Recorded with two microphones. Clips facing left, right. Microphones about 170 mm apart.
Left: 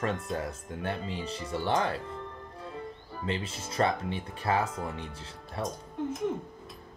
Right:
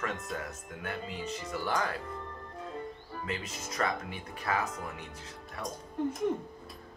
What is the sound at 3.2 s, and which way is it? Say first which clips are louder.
Speech: left 5 dB; 30° left (ahead or behind).